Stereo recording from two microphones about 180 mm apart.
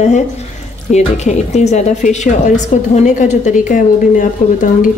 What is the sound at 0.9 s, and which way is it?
A woman's voice, 40° left (ahead or behind).